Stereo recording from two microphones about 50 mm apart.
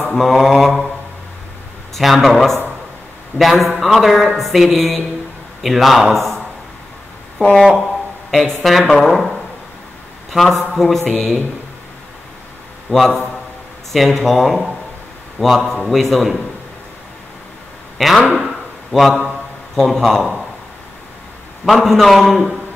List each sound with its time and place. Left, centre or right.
0.1 s speech: centre
2.0 s speech: centre
6.1 s a sound: centre
7.4 s speech: centre
8.3 s speech: centre
12.9 s a man's voice: left
13.9 s a man's voice: centre
17.9 s speech: centre
18.4 s a sound: centre
19.7 s a man's voice: centre
21.6 s speech: centre